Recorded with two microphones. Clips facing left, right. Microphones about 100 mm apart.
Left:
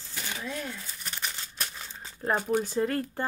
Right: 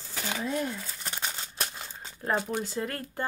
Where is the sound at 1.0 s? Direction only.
35° right (ahead or behind).